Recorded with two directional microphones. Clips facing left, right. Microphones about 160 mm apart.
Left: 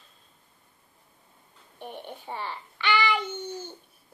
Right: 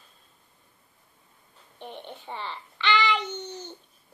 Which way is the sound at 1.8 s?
10° left (ahead or behind).